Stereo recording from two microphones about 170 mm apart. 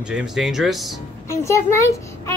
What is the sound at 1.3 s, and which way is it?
A child's voice, 15° left (ahead or behind).